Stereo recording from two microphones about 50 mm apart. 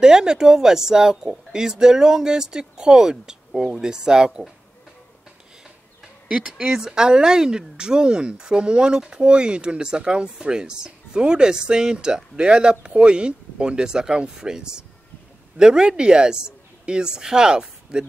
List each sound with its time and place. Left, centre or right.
0.0 s speech: centre
6.2 s a woman's voice: centre